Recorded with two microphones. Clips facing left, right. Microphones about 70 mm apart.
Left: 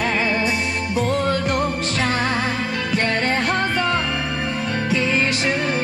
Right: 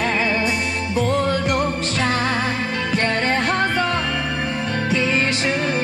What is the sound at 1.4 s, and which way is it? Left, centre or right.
Music, centre.